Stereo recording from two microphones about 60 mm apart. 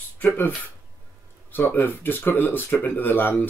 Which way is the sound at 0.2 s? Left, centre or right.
Left.